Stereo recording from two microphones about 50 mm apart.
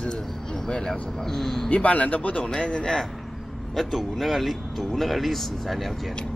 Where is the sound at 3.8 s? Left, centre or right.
Centre.